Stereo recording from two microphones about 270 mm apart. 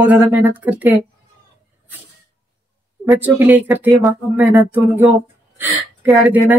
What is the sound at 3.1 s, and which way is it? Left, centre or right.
A woman's voice, centre.